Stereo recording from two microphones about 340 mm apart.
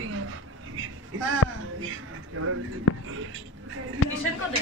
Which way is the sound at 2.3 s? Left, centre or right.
Right.